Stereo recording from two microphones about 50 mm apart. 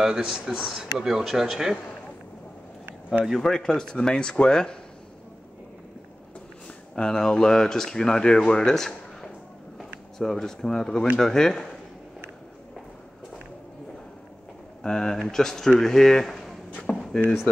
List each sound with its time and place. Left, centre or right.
0.0 s speech: centre
3.4 s speech: centre
7.0 s speech: centre
14.8 s speech: centre
16.9 s a sound: centre